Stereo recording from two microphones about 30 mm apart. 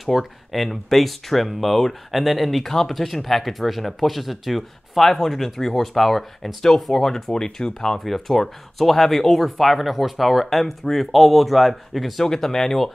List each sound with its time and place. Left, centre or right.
0.0 s speech: centre
7.3 s speech: left
8.0 s speech: centre
12.4 s speech: centre